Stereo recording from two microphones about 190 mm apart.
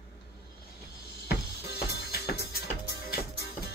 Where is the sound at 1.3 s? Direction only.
55° left (ahead or behind).